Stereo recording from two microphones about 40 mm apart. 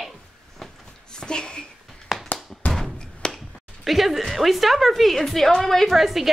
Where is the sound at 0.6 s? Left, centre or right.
Centre.